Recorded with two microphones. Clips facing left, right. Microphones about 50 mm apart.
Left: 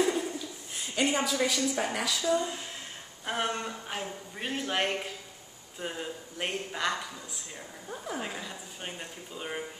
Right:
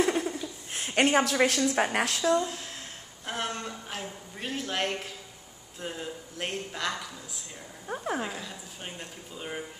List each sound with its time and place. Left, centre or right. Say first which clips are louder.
0.0 s a sound: right 2 dB; right
2.0 s speech: right 3 dB; right
2.3 s a man's voice: right 2 dB; centre
8.2 s a man's voice: right 2 dB; centre